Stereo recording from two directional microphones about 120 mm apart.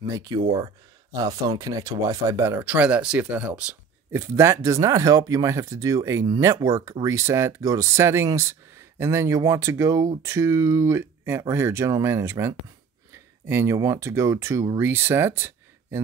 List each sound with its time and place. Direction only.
0.0 s speech: 30° right (ahead or behind); by 3.7 s 10° right (ahead or behind)
4.1 s speech: 25° right (ahead or behind)
13.1 s a sound: 20° right (ahead or behind)
13.7 s speech: 25° right (ahead or behind)